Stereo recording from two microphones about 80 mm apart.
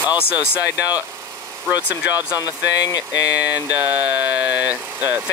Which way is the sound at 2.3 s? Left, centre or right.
Left.